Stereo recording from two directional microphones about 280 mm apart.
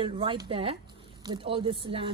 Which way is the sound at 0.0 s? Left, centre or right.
Centre.